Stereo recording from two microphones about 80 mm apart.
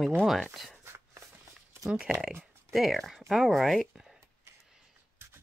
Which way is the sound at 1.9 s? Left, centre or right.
Centre.